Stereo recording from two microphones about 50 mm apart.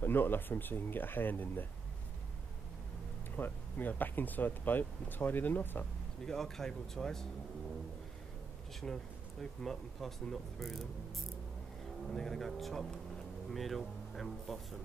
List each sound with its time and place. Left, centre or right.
0.0 s speech: left
3.3 s speech: left
6.2 s speech: centre
8.8 s speech: centre
12.1 s speech: centre